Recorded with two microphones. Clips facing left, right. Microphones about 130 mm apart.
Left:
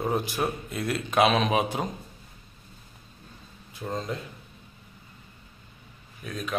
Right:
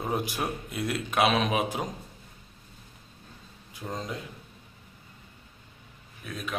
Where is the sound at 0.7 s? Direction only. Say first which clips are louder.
Left 1 dB; 10° right (ahead or behind).